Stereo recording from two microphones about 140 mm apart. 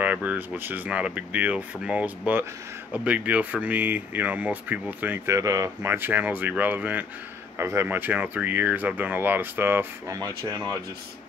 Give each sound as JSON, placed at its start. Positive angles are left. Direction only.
{"t": 0.0, "sound": "speech", "side_deg": -10}
{"t": 10.1, "sound": "speech", "side_deg": -25}